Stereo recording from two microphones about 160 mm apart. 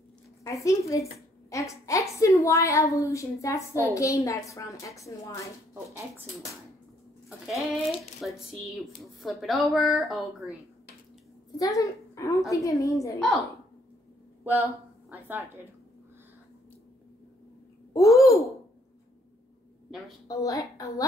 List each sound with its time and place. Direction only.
0.4 s a woman's voice: 20° left (ahead or behind)
7.2 s sheep: centre (ahead or behind)
8.2 s a woman's voice: centre (ahead or behind)
11.5 s a woman's voice: 20° left (ahead or behind)
14.4 s a sound: 10° right (ahead or behind)
18.1 s a woman's voice: 20° left (ahead or behind)
20.2 s a woman's voice: 20° left (ahead or behind)